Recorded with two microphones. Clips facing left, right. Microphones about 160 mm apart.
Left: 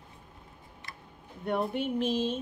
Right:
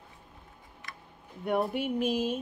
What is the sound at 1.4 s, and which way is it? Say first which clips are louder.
Speech: right 1 dB; 10° right (ahead or behind).